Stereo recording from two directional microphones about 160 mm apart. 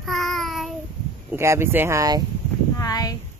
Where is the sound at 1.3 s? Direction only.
15° right (ahead or behind).